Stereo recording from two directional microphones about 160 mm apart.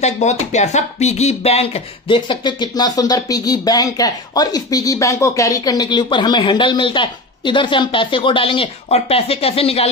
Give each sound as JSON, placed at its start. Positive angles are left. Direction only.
{"t": 0.0, "sound": "speech", "side_deg": 45}